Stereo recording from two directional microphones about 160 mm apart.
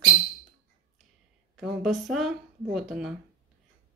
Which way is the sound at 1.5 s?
Centre (ahead or behind).